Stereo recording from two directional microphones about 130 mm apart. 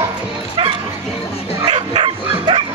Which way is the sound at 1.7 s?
45° right (ahead or behind).